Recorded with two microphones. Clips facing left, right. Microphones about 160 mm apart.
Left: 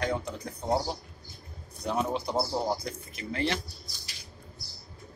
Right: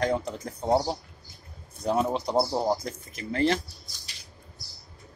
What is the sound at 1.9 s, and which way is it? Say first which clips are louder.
Speech: right 4 dB; 40° right (ahead or behind).